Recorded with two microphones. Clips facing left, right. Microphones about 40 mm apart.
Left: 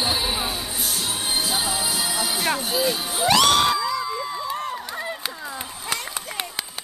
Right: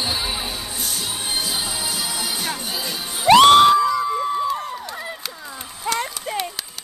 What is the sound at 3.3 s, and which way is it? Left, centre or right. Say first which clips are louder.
Crowd: right 8 dB; right.